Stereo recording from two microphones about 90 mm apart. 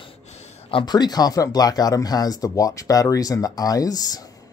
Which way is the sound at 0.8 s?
50° left (ahead or behind).